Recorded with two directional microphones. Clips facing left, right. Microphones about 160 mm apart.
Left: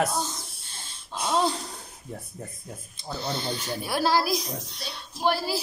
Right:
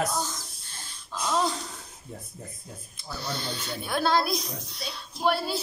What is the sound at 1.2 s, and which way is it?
Speech, 30° left (ahead or behind).